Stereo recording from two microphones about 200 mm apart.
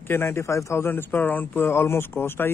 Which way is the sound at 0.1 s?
10° left (ahead or behind).